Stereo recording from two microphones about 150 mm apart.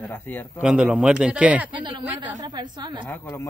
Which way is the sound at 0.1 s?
15° left (ahead or behind).